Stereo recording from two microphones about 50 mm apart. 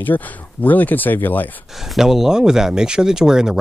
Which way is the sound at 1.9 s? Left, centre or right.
Centre.